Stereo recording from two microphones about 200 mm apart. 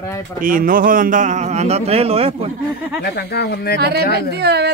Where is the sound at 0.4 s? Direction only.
45° right (ahead or behind).